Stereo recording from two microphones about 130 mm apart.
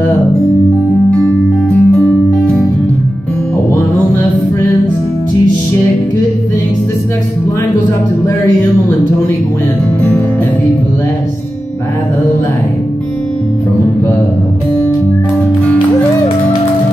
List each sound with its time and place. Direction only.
1.7 s music: 5° left (ahead or behind)
3.9 s music: 20° left (ahead or behind)